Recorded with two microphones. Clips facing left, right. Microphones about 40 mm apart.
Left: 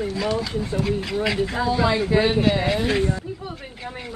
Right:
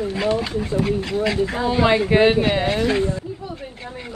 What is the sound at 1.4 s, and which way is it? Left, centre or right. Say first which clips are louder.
Speech: right 3 dB; right.